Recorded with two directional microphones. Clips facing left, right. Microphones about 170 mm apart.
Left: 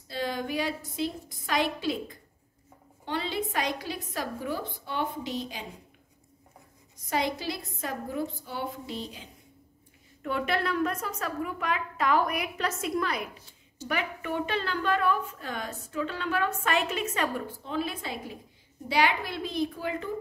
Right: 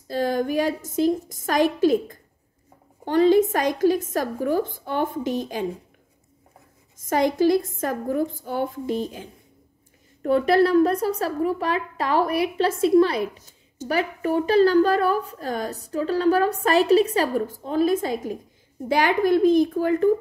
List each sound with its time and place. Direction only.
0.1 s a woman's voice: 45° right (ahead or behind)
7.0 s a woman's voice: 50° right (ahead or behind)
10.2 s a woman's voice: 35° right (ahead or behind)